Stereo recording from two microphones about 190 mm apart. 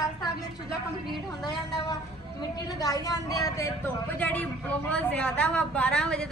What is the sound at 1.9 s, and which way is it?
A woman's voice, 20° left (ahead or behind).